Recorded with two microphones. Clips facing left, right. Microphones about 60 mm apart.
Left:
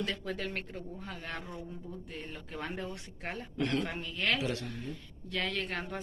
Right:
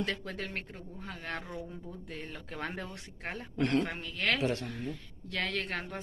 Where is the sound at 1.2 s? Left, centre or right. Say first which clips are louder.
Right 5 dB; right.